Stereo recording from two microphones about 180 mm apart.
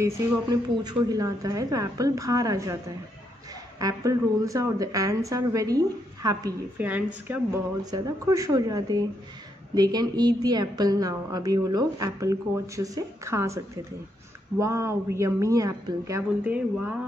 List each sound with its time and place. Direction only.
0.0 s a woman's voice: 20° right (ahead or behind)
3.8 s a woman's voice: 20° right (ahead or behind)
6.8 s a woman's voice: 10° right (ahead or behind)
7.8 s a woman's voice: 20° right (ahead or behind)